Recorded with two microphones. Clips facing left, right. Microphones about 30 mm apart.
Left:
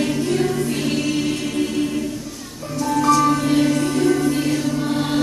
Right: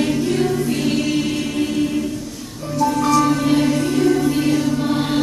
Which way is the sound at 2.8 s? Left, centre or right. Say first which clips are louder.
Even; centre.